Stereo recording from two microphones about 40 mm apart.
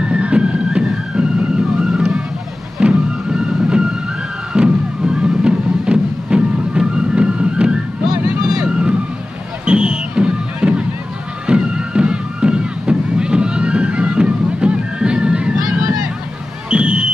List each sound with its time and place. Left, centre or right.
0.0 s emergency vehicle: right
2.8 s music: right
7.0 s vehicle: right
9.7 s music: right
16.7 s basketball bounce: right